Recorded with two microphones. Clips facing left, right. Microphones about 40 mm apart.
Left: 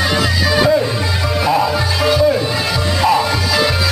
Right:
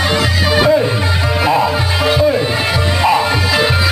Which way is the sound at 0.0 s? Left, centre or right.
Right.